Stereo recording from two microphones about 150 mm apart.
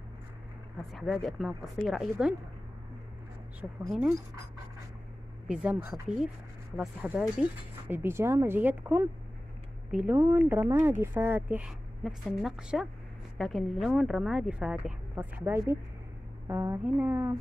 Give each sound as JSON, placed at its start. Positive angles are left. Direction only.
{"t": 1.0, "sound": "speech", "side_deg": 0}
{"t": 3.8, "sound": "speech", "side_deg": -5}
{"t": 5.5, "sound": "speech", "side_deg": -5}